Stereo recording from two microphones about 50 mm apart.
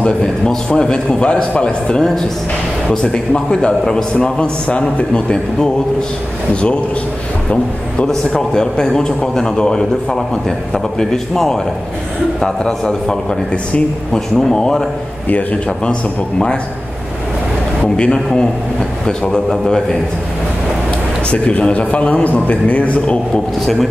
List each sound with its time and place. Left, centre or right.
0.7 s a man's voice: centre
8.1 s a man's voice: centre
15.2 s a man's voice: left
17.8 s a man's voice: centre
21.3 s a man's voice: left
23.3 s a man's voice: centre